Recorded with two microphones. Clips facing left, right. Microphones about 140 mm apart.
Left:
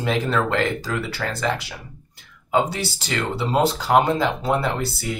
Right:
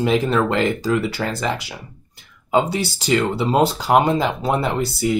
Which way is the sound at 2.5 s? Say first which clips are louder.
Right 3 dB; 15° right (ahead or behind).